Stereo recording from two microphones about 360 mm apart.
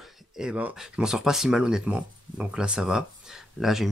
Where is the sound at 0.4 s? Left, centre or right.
Centre.